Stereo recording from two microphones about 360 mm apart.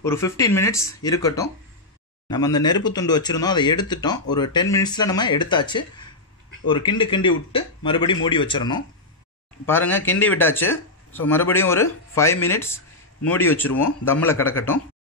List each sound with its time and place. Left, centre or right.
0.0 s speech: centre
13.7 s speech: left